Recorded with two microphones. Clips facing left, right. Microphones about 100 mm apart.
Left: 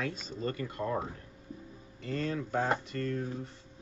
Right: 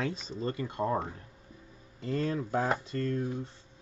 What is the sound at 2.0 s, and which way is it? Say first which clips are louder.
Speech: right 3 dB; 35° right (ahead or behind).